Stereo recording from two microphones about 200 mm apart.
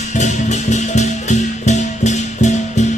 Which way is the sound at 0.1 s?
35° left (ahead or behind).